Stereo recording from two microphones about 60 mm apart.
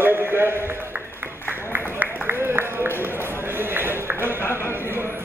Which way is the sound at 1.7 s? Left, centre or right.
Right.